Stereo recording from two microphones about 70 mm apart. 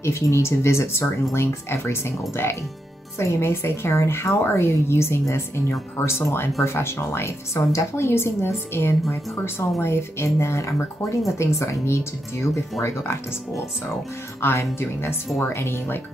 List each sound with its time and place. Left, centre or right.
0.0 s speech: left
14.4 s speech: left